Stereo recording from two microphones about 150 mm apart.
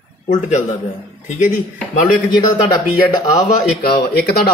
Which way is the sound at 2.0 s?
65° left (ahead or behind).